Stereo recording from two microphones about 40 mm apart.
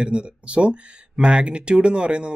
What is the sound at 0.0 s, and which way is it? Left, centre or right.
Speech, right.